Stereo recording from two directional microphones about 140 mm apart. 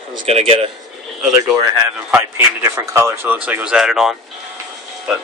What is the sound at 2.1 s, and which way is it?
Speech, 15° right (ahead or behind).